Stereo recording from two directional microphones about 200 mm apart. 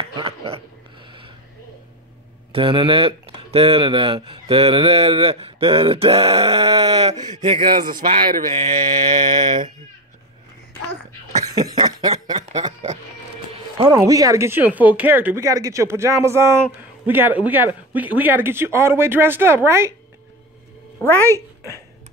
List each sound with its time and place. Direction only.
0.0 s a sound: 25° right (ahead or behind)
2.5 s speech: 25° right (ahead or behind)
7.2 s speech: 20° right (ahead or behind)
11.5 s speech: 20° right (ahead or behind)
13.7 s speech: 20° right (ahead or behind)